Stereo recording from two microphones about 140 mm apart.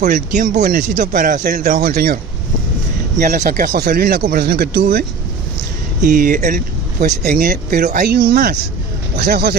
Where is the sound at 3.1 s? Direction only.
75° right (ahead or behind); by 5.1 s 90° right.